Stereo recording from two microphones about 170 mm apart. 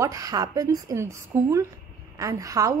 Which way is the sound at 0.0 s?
20° right (ahead or behind).